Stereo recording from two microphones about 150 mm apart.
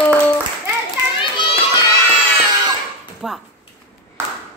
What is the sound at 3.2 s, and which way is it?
Speech, 5° right (ahead or behind).